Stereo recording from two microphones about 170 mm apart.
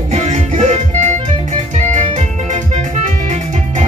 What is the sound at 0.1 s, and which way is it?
Music, 40° right (ahead or behind).